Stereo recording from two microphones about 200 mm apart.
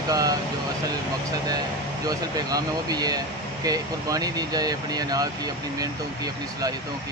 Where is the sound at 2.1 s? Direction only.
20° right (ahead or behind).